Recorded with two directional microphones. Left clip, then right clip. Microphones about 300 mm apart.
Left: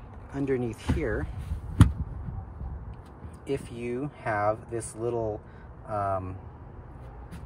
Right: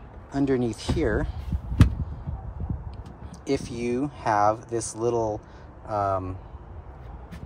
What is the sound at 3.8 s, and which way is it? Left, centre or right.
Speech, centre.